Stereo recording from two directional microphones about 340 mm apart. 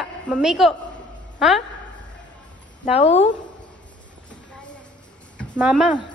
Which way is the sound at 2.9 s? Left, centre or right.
Centre.